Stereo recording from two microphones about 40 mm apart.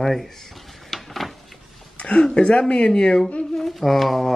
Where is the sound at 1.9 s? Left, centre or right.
Left.